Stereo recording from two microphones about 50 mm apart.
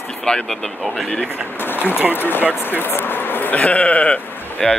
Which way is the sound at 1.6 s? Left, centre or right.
Left.